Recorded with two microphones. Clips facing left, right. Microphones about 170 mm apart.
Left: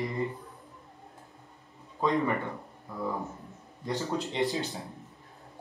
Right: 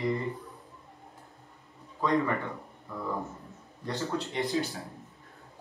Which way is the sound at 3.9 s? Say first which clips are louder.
Left 1 dB; 15° left (ahead or behind).